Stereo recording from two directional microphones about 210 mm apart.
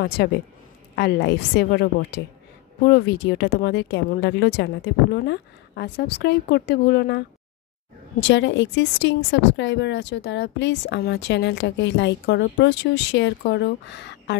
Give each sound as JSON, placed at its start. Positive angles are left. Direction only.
{"t": 0.0, "sound": "a woman's voice", "side_deg": 50}
{"t": 8.2, "sound": "a woman's voice", "side_deg": 60}